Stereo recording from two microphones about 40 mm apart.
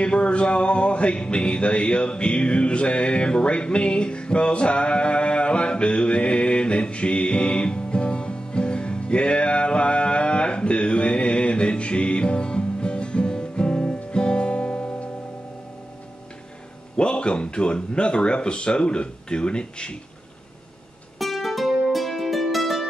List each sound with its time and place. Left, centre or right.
0.0 s music: left
16.9 s speech: left
21.2 s music: centre